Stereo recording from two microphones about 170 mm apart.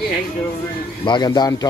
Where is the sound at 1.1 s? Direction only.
25° left (ahead or behind).